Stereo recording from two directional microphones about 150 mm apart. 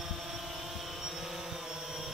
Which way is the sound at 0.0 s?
Centre (ahead or behind).